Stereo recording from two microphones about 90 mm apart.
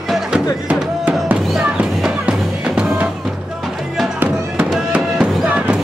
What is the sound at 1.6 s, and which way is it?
Music, 10° right (ahead or behind).